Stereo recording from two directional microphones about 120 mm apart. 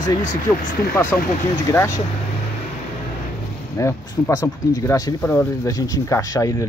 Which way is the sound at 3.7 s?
25° left (ahead or behind).